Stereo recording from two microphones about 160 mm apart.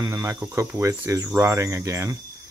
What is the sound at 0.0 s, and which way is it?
Speech, 20° right (ahead or behind).